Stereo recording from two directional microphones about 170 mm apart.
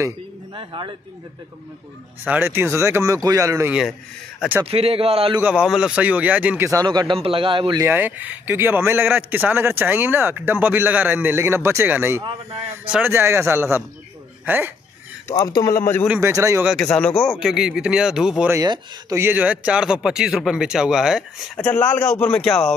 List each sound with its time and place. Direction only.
0.6 s speech: 30° right (ahead or behind)
2.2 s a man's voice: 10° right (ahead or behind)
4.6 s speech: 35° right (ahead or behind)
5.4 s a man's voice: 5° right (ahead or behind); by 7.8 s 30° right (ahead or behind)
7.8 s a man's voice: 10° right (ahead or behind)
15.2 s speech: 20° left (ahead or behind)
16.2 s a man's voice: 20° right (ahead or behind)
16.6 s speech: 5° left (ahead or behind)
18.5 s speech: 20° right (ahead or behind); by 21.6 s 5° right (ahead or behind)
21.6 s speech: 10° left (ahead or behind)